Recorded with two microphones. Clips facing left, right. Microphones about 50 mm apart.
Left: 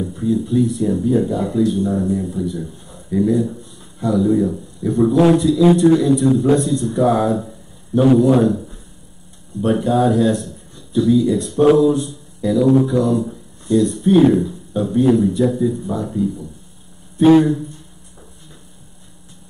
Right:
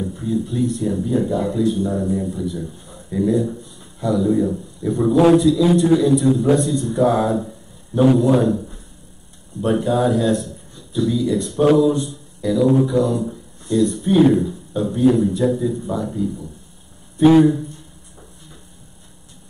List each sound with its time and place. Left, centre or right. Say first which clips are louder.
0.0 s a man's voice: left 3 dB; centre